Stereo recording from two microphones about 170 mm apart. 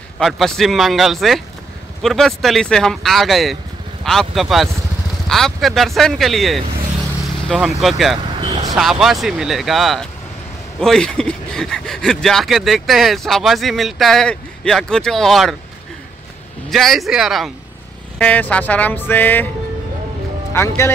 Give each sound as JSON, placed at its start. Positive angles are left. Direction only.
{"t": 0.2, "sound": "speech", "side_deg": 0}
{"t": 8.4, "sound": "vehicle", "side_deg": -30}
{"t": 8.7, "sound": "speech", "side_deg": 0}
{"t": 16.7, "sound": "speech", "side_deg": 0}
{"t": 18.2, "sound": "music", "side_deg": 10}
{"t": 20.5, "sound": "music", "side_deg": 15}